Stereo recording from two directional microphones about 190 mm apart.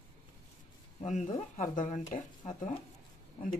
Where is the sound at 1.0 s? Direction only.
40° left (ahead or behind).